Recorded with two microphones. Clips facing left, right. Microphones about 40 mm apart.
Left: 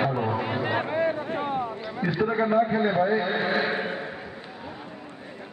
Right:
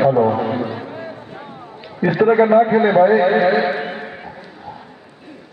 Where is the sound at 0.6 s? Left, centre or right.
Left.